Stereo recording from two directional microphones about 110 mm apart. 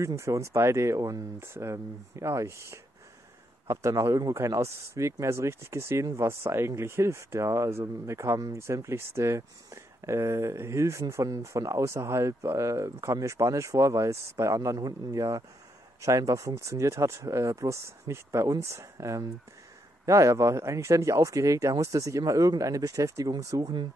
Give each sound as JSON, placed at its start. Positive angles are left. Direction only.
{"t": 0.0, "sound": "speech", "side_deg": -25}